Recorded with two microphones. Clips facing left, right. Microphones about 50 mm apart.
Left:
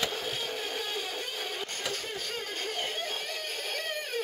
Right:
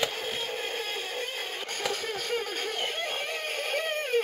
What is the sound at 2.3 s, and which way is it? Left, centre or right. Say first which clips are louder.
Music: right 5 dB; right.